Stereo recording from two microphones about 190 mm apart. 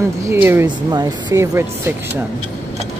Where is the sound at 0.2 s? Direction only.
15° right (ahead or behind).